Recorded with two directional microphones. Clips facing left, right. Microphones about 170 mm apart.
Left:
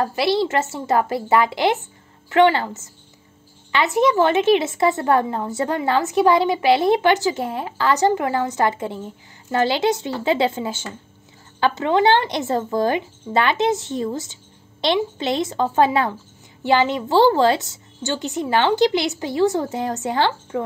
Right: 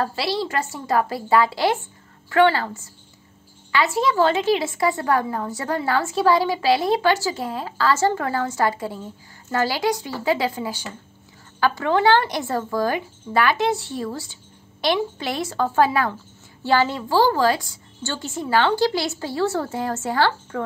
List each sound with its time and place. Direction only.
0.0 s a woman's voice: 20° left (ahead or behind)